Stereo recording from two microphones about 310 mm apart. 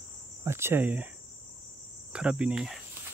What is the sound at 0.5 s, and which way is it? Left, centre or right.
Speech, centre.